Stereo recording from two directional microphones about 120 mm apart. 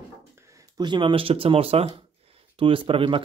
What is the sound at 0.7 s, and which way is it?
Speech, 40° right (ahead or behind).